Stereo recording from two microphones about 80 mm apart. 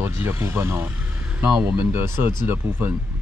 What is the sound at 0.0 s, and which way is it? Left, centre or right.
Speech, right.